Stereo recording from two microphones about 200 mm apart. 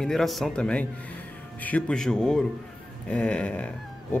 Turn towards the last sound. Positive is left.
turn(degrees=5)  # may be behind; listen again after turning